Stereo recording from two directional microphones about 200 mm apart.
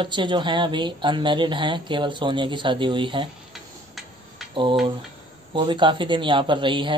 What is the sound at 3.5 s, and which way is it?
Tick-tock, centre (ahead or behind).